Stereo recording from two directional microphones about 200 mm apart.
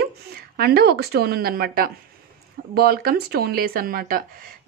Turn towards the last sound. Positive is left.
turn(degrees=-45)  # may be behind; listen again after turning